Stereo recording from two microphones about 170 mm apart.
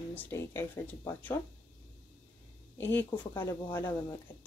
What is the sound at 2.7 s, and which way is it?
Speech, 15° left (ahead or behind).